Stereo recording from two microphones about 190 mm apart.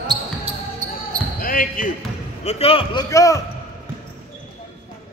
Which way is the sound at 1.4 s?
50° left (ahead or behind).